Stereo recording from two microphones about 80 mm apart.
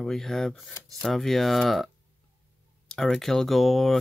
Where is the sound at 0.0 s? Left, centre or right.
Centre.